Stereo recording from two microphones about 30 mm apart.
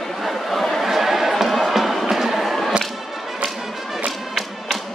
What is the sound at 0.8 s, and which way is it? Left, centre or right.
Chatter, centre.